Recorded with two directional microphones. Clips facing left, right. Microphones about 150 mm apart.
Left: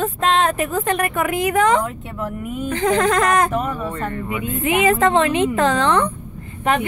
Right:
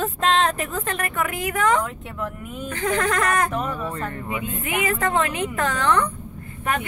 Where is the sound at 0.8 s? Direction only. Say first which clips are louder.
Left 6 dB; 15° left (ahead or behind).